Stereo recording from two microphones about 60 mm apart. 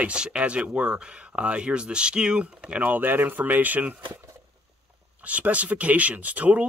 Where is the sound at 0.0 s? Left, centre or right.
Centre.